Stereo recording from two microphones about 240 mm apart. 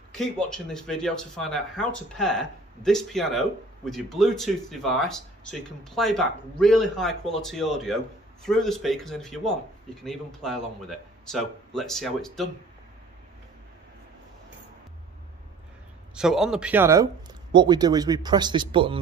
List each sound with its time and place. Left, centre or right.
0.1 s speech: centre
16.2 s speech: centre; by 18.9 s right